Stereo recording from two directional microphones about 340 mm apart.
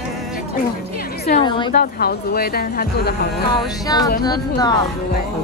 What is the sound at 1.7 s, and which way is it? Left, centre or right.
Speech, left.